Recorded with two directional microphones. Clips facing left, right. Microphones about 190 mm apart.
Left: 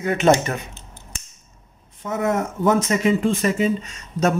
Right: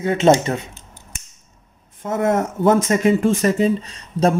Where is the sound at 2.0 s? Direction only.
50° right (ahead or behind).